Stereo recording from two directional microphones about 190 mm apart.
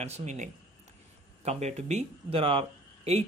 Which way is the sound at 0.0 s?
35° right (ahead or behind).